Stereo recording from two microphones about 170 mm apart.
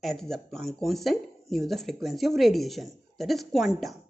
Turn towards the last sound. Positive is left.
turn(degrees=0)  # may be behind; listen again after turning